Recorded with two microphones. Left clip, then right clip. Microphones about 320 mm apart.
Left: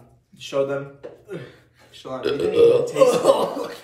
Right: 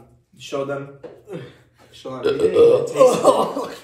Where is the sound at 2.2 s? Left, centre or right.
Centre.